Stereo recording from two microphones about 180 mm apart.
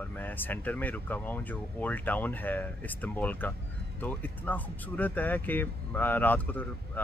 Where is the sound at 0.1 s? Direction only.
10° left (ahead or behind).